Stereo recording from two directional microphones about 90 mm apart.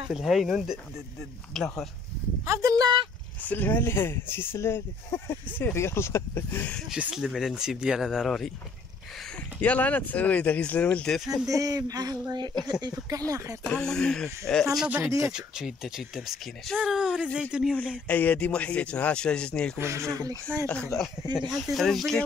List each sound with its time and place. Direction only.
0.1 s speech: centre (ahead or behind)
2.4 s speech: 35° right (ahead or behind)
3.4 s speech: 20° left (ahead or behind)
6.9 s speech: 10° right (ahead or behind)
9.6 s speech: 20° left (ahead or behind)
11.4 s speech: 40° right (ahead or behind)
13.7 s speech: 5° left (ahead or behind)
15.0 s speech: 35° right (ahead or behind)
15.3 s speech: 5° right (ahead or behind)
18.0 s speech: 15° left (ahead or behind)
19.8 s speech: 30° right (ahead or behind)
20.6 s speech: 15° left (ahead or behind)
21.3 s speech: 55° right (ahead or behind)
21.5 s speech: centre (ahead or behind)